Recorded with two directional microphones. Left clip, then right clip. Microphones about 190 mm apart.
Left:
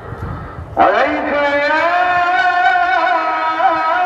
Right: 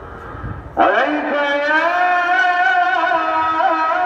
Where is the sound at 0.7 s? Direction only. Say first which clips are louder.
Left 2 dB; 40° left (ahead or behind).